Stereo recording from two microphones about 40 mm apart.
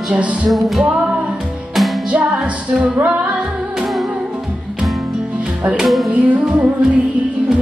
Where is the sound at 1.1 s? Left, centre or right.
Right.